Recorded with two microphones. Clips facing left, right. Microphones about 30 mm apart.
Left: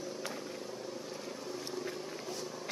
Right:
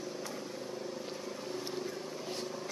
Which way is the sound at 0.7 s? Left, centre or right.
Centre.